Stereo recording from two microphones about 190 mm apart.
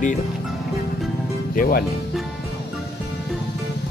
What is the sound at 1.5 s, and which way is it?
Speech, 50° left (ahead or behind).